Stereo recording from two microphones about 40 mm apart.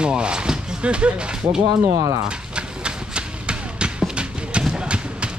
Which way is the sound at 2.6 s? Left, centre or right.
Right.